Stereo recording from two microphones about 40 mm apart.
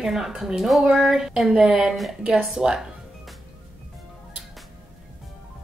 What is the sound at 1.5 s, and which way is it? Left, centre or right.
Speech, right.